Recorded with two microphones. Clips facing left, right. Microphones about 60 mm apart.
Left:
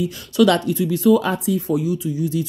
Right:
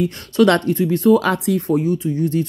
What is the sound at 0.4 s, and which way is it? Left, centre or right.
Speech, right.